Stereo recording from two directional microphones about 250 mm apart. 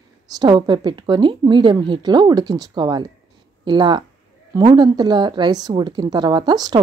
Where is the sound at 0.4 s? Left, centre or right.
Centre.